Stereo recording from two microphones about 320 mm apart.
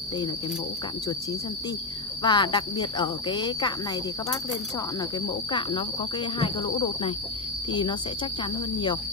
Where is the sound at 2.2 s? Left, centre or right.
Centre.